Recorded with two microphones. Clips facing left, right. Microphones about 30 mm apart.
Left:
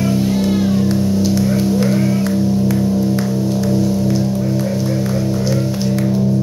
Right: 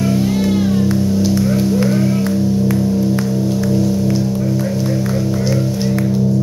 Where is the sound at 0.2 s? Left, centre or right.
Centre.